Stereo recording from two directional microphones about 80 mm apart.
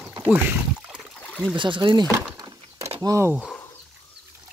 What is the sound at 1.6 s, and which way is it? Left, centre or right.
Speech, right.